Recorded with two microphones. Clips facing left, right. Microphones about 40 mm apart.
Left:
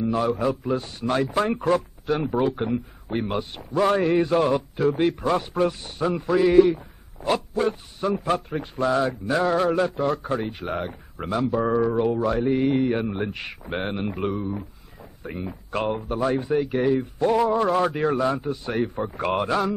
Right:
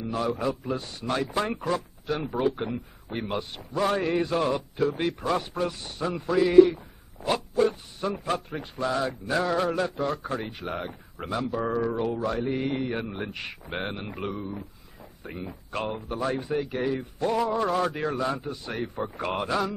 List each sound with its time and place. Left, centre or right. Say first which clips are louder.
0.1 s speech: left 1 dB; centre
2.0 s speech: left 3 dB; centre
10.4 s speech: left 5 dB; centre